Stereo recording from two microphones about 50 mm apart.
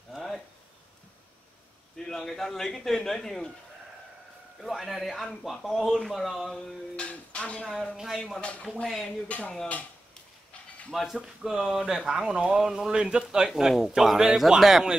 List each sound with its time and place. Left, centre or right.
0.1 s a sound: centre
2.0 s a man's voice: centre
4.6 s speech: centre
7.0 s speech: left
7.6 s a man's voice: centre
8.4 s speech: left
8.8 s speech: centre
10.9 s speech: centre